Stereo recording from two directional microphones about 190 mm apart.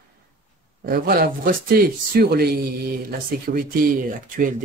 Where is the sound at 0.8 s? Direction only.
55° right (ahead or behind).